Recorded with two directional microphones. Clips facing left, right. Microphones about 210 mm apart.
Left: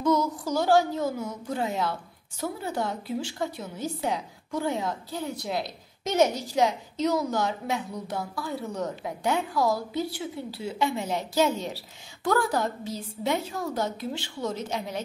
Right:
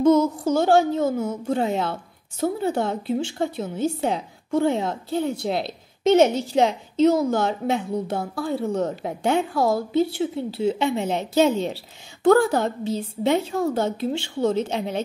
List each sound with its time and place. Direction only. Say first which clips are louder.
0.0 s child singing: right 7 dB; 25° right (ahead or behind)
1.2 s a woman's voice: right 7 dB; 25° right (ahead or behind)